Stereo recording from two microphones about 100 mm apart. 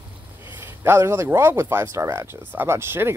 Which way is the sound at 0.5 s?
25° right (ahead or behind).